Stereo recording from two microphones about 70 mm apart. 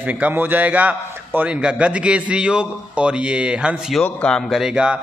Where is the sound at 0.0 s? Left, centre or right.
Right.